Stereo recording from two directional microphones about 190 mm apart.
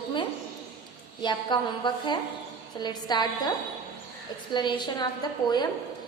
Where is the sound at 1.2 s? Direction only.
25° left (ahead or behind).